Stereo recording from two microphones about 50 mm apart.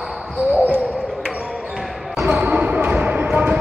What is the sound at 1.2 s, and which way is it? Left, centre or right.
Basketball bounce, centre.